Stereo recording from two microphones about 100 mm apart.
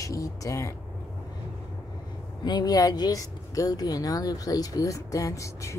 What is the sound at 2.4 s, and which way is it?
Speech, 45° left (ahead or behind).